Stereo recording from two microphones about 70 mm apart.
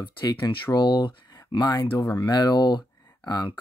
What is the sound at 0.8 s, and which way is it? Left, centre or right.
Speech, left.